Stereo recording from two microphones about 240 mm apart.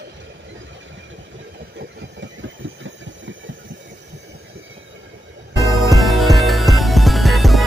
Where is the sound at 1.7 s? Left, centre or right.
Right.